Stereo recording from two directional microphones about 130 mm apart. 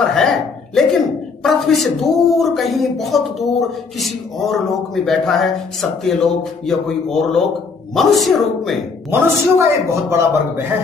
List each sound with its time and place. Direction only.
0.1 s a sound: 5° left (ahead or behind)
1.4 s speech: centre (ahead or behind)
9.1 s a man's voice: 20° right (ahead or behind)